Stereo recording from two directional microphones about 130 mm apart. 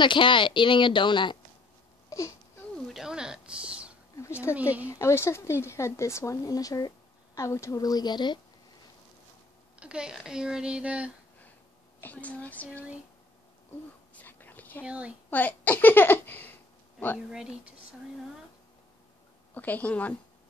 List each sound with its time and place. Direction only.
0.0 s speech: 40° left (ahead or behind)
2.0 s crying: 25° left (ahead or behind)
2.9 s a sound: 5° right (ahead or behind)
4.6 s speech: 10° right (ahead or behind)
4.8 s a woman's voice: 20° left (ahead or behind)
9.8 s speech: 10° right (ahead or behind)
12.0 s speech: 10° left (ahead or behind)
14.1 s a sound: 15° left (ahead or behind)
14.8 s speech: 10° right (ahead or behind)
15.2 s speech: 15° left (ahead or behind)
17.3 s speech: 5° right (ahead or behind)
19.5 s speech: 15° left (ahead or behind)